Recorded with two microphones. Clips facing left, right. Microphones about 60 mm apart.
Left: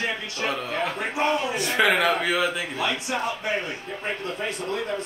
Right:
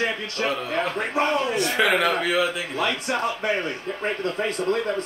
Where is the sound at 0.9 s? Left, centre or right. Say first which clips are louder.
Right 1 dB; right.